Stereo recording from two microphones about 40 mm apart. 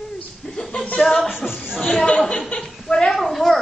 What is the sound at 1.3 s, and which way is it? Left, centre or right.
Speech, centre.